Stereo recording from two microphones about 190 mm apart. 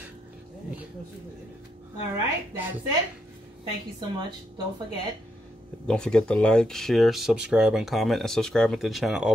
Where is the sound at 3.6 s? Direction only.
25° right (ahead or behind).